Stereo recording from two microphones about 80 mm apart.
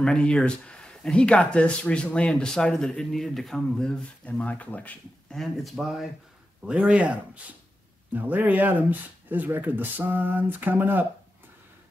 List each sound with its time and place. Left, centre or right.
0.0 s speech: centre
5.3 s speech: centre
6.6 s speech: centre